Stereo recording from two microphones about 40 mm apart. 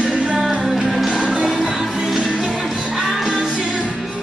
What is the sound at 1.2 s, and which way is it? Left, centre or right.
Music, centre.